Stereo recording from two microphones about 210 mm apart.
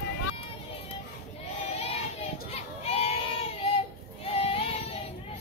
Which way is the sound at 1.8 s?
30° left (ahead or behind).